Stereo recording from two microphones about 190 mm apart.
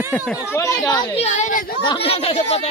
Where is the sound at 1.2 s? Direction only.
40° left (ahead or behind).